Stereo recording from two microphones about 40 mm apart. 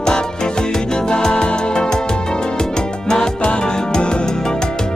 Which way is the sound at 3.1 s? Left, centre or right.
Centre.